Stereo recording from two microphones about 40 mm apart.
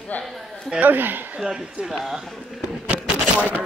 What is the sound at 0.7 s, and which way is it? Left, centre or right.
Speech, right.